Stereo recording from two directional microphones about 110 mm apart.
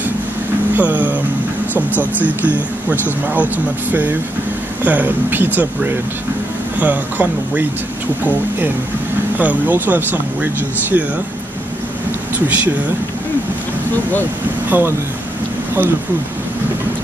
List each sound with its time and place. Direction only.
0.7 s speech: 15° right (ahead or behind)
9.4 s speech: 15° right (ahead or behind)
14.7 s speech: 20° right (ahead or behind)